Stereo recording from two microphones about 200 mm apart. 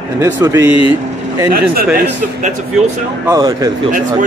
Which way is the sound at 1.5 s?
50° right (ahead or behind).